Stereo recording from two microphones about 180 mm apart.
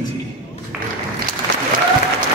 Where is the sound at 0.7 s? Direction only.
5° right (ahead or behind).